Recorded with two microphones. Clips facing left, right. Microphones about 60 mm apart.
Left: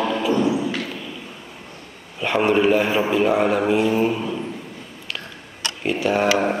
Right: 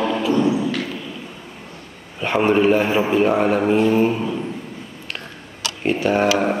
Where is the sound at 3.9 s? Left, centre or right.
Centre.